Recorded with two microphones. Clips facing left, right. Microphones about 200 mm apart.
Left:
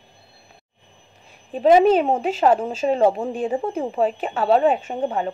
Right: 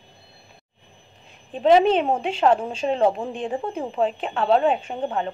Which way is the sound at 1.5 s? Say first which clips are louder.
Left 2 dB; 5° left (ahead or behind).